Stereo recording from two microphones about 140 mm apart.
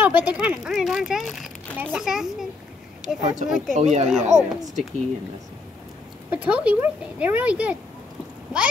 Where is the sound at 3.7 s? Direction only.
55° right (ahead or behind).